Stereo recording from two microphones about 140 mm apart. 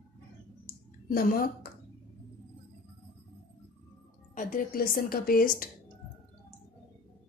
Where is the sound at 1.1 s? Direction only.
90° left.